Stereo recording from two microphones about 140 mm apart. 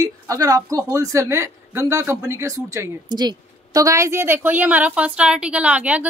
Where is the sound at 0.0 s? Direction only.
25° right (ahead or behind).